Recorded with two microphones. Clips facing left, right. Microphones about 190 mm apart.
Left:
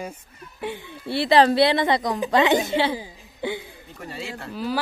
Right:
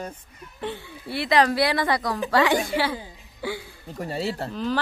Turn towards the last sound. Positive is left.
turn(degrees=10)  # may be behind; listen again after turning